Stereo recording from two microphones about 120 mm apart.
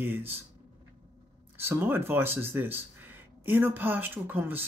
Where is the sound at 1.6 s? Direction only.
20° right (ahead or behind).